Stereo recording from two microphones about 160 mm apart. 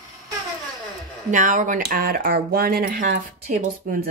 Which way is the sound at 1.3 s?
50° right (ahead or behind).